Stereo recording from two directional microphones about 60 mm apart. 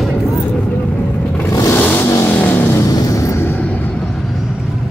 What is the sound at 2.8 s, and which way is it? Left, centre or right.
Music, left.